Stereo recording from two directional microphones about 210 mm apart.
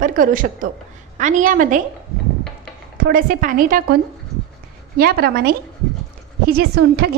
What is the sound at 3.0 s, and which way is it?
Speech, 40° right (ahead or behind).